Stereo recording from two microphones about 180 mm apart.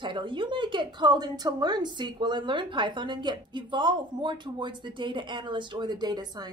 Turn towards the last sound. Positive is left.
turn(degrees=-20)  # may be behind; listen again after turning